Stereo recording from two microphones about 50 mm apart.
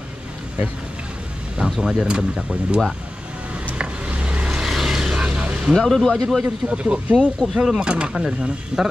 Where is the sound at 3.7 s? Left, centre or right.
Right.